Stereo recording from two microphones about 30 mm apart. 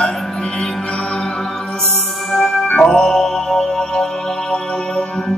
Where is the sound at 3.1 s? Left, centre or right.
Centre.